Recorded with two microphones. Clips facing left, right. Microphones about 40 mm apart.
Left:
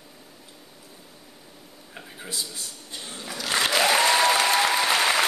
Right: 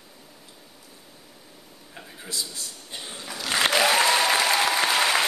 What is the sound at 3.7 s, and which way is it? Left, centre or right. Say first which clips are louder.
Applause: left 1 dB; centre.